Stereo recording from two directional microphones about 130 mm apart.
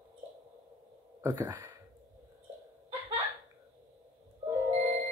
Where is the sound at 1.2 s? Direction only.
20° right (ahead or behind).